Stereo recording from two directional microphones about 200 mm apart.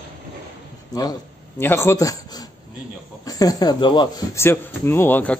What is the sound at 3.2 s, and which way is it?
Speech, 15° left (ahead or behind).